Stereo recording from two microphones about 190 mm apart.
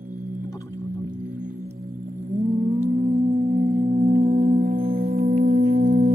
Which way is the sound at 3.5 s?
60° right (ahead or behind).